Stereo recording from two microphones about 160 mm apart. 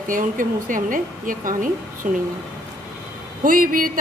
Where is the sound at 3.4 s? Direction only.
60° right (ahead or behind).